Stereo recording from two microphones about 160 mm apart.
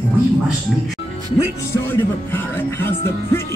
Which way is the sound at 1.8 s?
15° left (ahead or behind).